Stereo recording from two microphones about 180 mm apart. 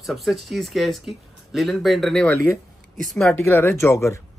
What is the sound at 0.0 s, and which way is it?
Speech, centre (ahead or behind).